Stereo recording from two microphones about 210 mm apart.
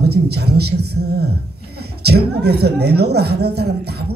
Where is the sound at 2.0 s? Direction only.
50° right (ahead or behind).